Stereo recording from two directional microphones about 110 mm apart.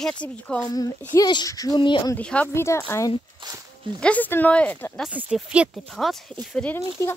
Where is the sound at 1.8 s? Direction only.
45° left (ahead or behind).